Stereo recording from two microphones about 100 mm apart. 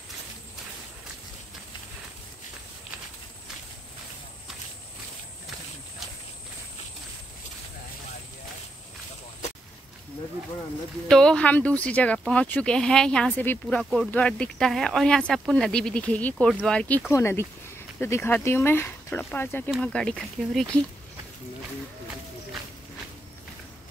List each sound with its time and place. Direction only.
11.1 s speech: 10° left (ahead or behind)
17.1 s speech: 25° left (ahead or behind)
19.8 s speech: 10° left (ahead or behind)